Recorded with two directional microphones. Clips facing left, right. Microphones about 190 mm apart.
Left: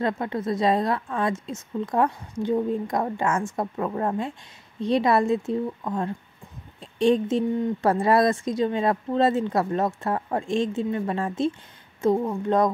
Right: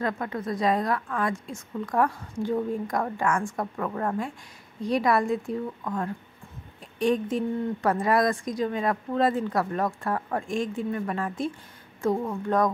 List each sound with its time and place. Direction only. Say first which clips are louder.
0.0 s speech: left 3 dB; 25° left (ahead or behind)